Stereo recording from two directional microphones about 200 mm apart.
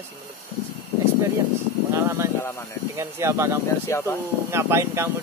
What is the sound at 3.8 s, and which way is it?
Speech, 15° left (ahead or behind).